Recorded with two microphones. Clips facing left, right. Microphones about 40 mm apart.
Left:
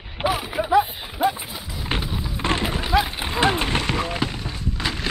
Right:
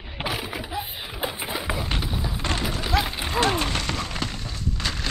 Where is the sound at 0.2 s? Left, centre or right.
Centre.